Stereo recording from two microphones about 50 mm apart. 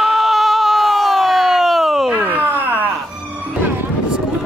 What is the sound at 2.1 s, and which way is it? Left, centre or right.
Groan, right.